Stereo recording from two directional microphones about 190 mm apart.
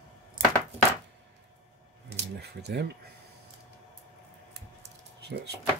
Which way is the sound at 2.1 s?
60° right (ahead or behind).